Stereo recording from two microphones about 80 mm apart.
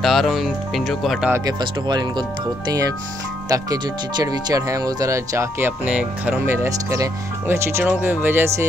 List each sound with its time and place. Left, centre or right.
0.0 s speech: centre
1.6 s speech: right
3.4 s speech: right
5.9 s speech: centre
6.4 s speech: right